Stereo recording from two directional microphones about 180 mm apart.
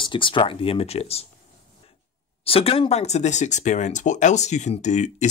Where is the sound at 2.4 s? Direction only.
30° left (ahead or behind).